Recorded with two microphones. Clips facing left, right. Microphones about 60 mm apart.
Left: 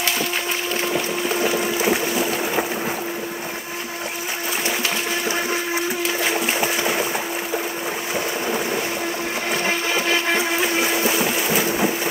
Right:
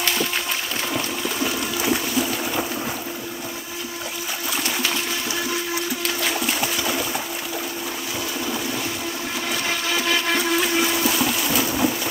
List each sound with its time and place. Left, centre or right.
1.4 s boat: left
6.2 s a sound: left
9.5 s blender: left